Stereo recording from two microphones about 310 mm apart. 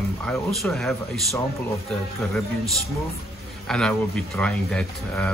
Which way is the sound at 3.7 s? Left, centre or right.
Centre.